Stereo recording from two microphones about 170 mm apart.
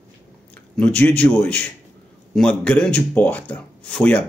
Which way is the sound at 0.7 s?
5° left (ahead or behind).